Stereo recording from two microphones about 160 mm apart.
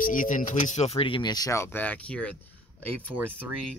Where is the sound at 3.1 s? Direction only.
10° right (ahead or behind).